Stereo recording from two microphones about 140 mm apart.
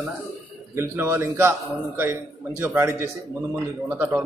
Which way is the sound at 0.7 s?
15° right (ahead or behind).